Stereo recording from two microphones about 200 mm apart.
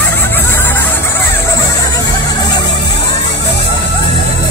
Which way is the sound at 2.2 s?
20° left (ahead or behind).